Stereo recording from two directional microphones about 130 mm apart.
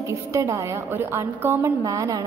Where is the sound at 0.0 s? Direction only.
25° right (ahead or behind).